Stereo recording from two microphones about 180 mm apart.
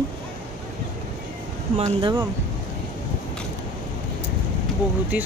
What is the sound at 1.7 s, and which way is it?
Speech, 25° right (ahead or behind).